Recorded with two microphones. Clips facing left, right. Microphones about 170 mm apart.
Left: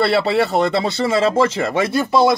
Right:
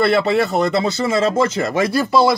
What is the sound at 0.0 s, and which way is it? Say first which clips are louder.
Speech: right 1 dB; 30° left (ahead or behind).